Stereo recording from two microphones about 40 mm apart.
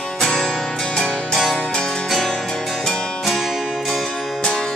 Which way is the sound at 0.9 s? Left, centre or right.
Centre.